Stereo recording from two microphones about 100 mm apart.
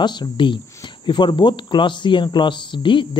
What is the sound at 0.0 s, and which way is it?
Speech, 50° left (ahead or behind).